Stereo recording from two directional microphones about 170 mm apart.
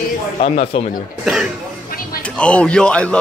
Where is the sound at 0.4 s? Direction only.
35° left (ahead or behind).